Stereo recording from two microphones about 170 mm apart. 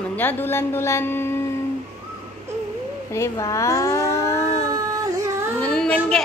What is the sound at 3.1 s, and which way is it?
Speech, 15° left (ahead or behind).